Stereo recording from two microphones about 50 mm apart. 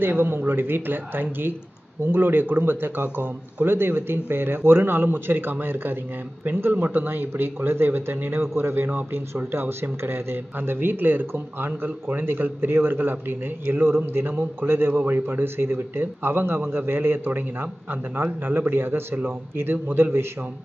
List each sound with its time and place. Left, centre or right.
0.0 s speech: right